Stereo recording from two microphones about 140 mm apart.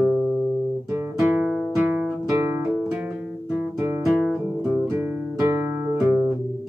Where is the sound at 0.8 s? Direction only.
20° right (ahead or behind).